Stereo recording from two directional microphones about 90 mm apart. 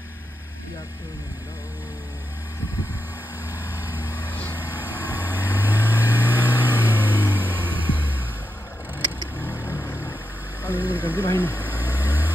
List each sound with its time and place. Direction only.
3.7 s vehicle: 20° right (ahead or behind)
4.0 s vehicle: 25° left (ahead or behind)
4.6 s vehicle: 20° right (ahead or behind)
9.4 s vehicle: 25° left (ahead or behind)
10.7 s vehicle: 20° right (ahead or behind)
11.1 s vehicle: 20° left (ahead or behind)
11.6 s vehicle: 20° right (ahead or behind)